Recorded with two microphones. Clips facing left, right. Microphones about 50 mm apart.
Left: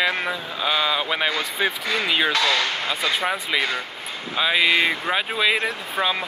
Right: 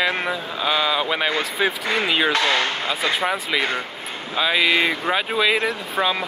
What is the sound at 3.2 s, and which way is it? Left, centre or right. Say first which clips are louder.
Speech: right 1 dB; centre.